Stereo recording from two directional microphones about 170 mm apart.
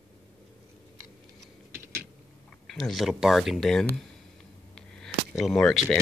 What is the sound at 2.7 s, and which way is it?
Speech, centre (ahead or behind).